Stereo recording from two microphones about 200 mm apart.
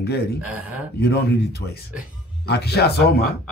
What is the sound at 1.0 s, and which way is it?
A man's voice, 50° left (ahead or behind).